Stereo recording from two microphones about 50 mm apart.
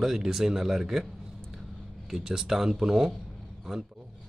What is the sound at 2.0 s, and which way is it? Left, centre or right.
Speech, centre.